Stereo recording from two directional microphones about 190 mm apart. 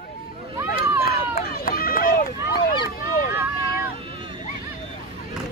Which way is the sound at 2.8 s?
60° left (ahead or behind).